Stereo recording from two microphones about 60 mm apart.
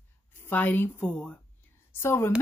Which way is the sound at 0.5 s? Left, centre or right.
Left.